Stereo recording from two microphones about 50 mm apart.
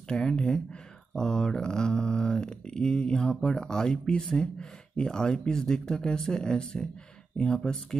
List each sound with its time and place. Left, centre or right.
0.1 s speech: centre